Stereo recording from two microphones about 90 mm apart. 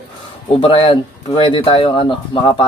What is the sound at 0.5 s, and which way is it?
A man's voice, 90° left.